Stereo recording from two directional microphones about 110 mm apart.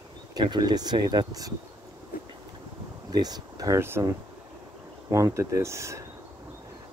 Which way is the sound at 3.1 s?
35° right (ahead or behind).